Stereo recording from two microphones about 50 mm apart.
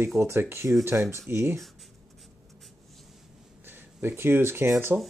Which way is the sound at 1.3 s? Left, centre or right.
Right.